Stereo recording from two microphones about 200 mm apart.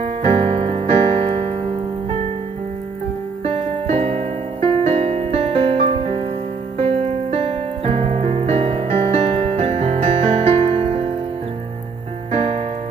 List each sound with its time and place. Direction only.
0.0 s keyboard: 30° right (ahead or behind)
3.4 s music: 30° right (ahead or behind)
6.8 s keyboard: 30° right (ahead or behind)
9.6 s music: 35° right (ahead or behind)
12.3 s music: 30° right (ahead or behind)